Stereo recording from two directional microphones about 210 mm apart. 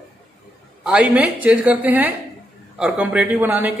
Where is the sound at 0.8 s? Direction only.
5° right (ahead or behind).